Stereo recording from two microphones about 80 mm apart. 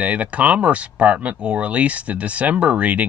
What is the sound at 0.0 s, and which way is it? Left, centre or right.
Speech, centre.